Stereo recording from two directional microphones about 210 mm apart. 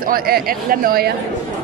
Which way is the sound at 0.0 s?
45° right (ahead or behind).